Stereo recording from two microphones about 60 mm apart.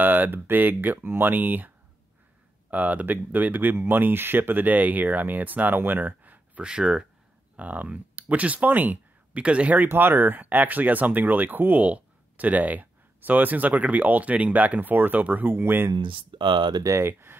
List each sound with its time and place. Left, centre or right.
0.0 s speech: right
2.7 s speech: right
6.6 s speech: centre
7.5 s speech: right
9.8 s speech: right
17.0 s speech: right